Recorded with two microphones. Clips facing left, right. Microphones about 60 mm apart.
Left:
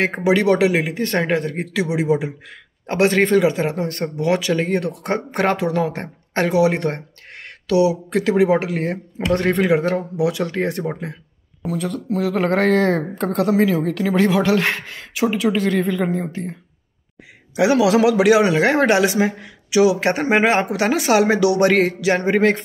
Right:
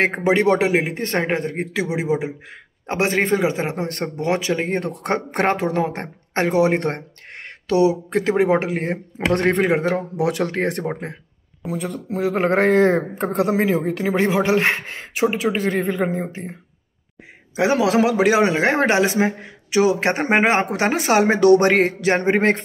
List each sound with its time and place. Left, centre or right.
0.2 s speech: right
9.9 s speech: right
11.6 s speech: centre
17.6 s speech: right